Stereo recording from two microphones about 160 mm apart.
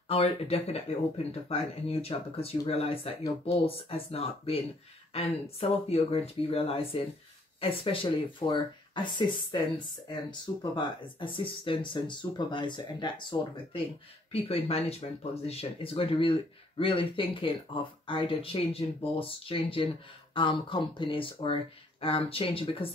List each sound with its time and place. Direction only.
0.1 s speech: 40° left (ahead or behind)